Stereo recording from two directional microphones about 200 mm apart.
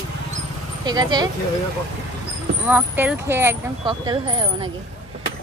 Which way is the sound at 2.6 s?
10° right (ahead or behind).